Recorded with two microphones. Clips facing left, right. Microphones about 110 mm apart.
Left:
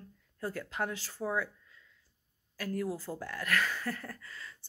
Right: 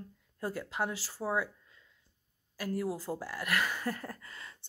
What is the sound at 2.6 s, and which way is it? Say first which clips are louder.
Speech: right 1 dB; 10° right (ahead or behind).